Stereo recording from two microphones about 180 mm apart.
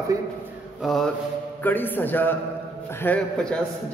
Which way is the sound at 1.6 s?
10° left (ahead or behind).